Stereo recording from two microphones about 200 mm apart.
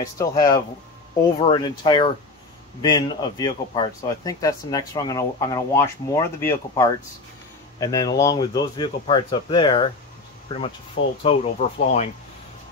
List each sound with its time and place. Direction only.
0.2 s speech: 15° left (ahead or behind)
11.2 s speech: 35° left (ahead or behind)